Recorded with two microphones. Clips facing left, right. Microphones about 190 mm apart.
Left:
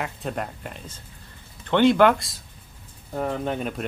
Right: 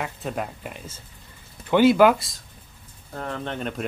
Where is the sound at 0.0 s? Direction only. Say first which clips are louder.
Even; centre (ahead or behind).